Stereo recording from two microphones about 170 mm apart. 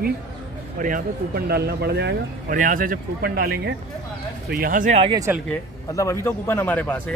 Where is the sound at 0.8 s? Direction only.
50° right (ahead or behind).